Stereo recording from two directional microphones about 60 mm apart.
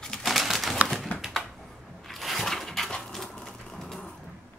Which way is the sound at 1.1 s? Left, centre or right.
Left.